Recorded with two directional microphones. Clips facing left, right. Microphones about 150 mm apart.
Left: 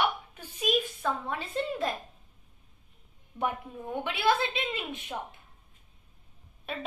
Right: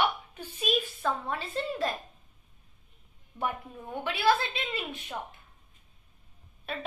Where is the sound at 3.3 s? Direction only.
5° left (ahead or behind).